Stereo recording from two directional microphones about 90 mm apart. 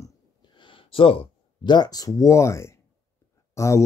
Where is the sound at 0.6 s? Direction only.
75° left (ahead or behind).